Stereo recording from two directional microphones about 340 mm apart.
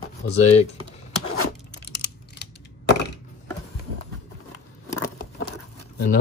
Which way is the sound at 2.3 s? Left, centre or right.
Left.